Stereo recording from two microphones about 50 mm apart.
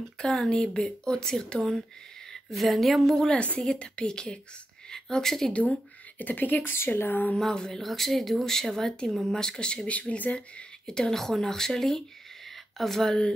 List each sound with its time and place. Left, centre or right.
0.2 s a woman's voice: centre
3.6 s speech: centre
6.1 s speech: left
7.5 s speech: centre
9.8 s speech: left
10.9 s speech: centre